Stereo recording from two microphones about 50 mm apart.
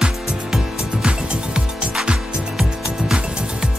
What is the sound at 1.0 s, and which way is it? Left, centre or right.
Music, centre.